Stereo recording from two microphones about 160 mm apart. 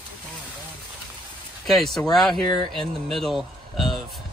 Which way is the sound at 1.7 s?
Centre (ahead or behind).